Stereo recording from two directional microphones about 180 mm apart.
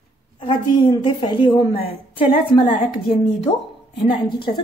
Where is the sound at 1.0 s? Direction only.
25° left (ahead or behind).